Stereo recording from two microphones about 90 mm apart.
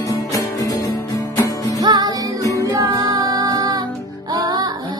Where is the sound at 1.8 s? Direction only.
50° right (ahead or behind).